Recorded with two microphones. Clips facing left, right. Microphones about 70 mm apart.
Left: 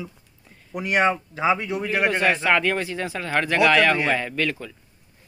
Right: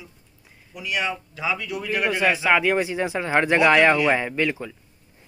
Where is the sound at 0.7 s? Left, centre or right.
Left.